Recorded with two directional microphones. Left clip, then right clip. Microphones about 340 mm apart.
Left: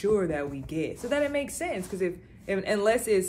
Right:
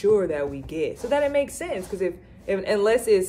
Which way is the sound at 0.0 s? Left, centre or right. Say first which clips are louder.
Right 5 dB; centre.